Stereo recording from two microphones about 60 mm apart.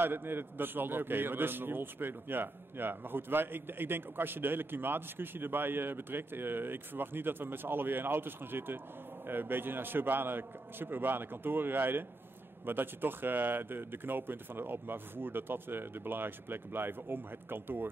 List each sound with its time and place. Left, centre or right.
0.0 s a man's voice: right